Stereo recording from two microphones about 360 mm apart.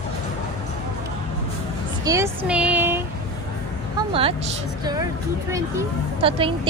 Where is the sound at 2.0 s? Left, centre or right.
Centre.